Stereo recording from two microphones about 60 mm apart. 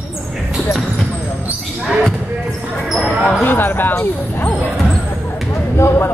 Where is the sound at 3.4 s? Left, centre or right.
Left.